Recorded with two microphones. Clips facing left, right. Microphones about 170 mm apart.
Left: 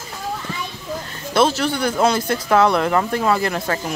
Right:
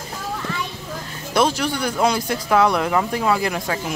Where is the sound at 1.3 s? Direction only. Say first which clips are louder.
Left 2 dB; 10° right (ahead or behind).